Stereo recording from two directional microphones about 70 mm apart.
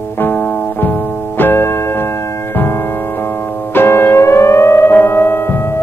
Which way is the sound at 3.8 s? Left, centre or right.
Left.